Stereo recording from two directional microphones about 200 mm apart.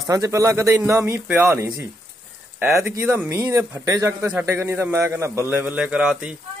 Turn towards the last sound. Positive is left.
turn(degrees=-5)  # may be behind; listen again after turning